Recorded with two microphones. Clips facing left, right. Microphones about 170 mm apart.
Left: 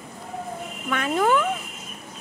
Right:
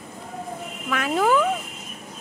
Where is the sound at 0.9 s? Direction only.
Centre (ahead or behind).